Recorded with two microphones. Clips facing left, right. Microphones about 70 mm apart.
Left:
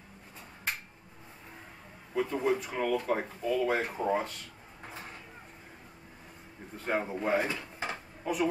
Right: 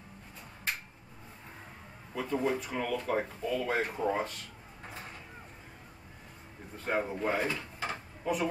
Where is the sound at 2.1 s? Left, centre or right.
Centre.